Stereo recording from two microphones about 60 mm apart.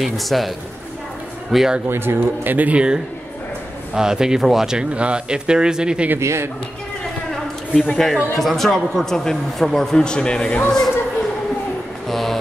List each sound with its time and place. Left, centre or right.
0.0 s speech: centre
1.5 s speech: centre
1.9 s speech: right; by 6.0 s centre
6.1 s speech: right
7.2 s a sound: centre
8.4 s a man's voice: centre
12.1 s a sound: centre